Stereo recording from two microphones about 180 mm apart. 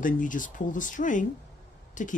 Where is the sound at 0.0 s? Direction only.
45° left (ahead or behind).